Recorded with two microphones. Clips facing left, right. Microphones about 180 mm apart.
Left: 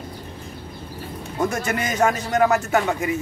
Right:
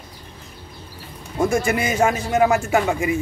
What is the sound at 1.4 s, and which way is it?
A man's voice, 10° right (ahead or behind).